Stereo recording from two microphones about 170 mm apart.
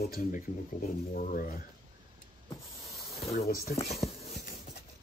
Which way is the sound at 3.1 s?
35° left (ahead or behind).